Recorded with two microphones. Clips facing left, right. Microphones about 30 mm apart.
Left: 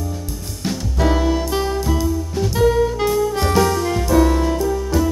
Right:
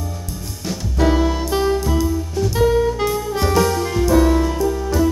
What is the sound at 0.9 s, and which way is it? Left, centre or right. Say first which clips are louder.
Music: right 1 dB; centre.